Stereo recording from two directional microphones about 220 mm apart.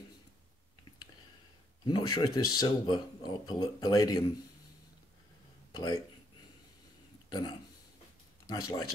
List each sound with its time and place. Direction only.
1.9 s speech: 20° left (ahead or behind)
5.7 s speech: 20° left (ahead or behind)
7.2 s speech: 20° left (ahead or behind)